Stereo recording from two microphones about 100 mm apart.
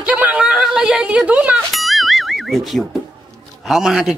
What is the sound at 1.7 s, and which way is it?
Music, centre (ahead or behind).